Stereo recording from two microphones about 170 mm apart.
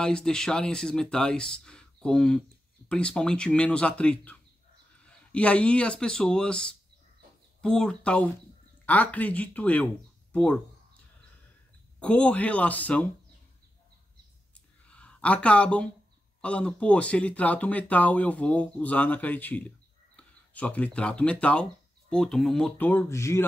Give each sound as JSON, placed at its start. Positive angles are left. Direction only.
{"t": 0.0, "sound": "speech", "side_deg": 5}
{"t": 12.0, "sound": "speech", "side_deg": 5}
{"t": 14.9, "sound": "speech", "side_deg": 5}